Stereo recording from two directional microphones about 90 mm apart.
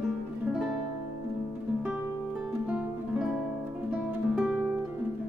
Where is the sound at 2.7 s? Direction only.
10° right (ahead or behind).